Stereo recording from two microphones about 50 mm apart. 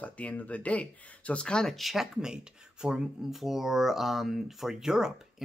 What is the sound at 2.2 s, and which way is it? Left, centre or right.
Speech, centre.